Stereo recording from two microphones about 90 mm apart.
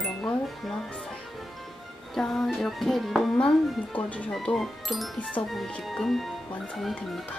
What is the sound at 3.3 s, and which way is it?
Speech, 15° left (ahead or behind).